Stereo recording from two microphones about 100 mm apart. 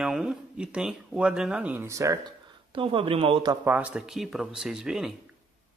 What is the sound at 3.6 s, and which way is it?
Speech, 15° right (ahead or behind).